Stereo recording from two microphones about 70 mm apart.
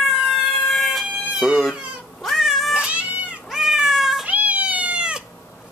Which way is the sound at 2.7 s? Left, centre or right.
Centre.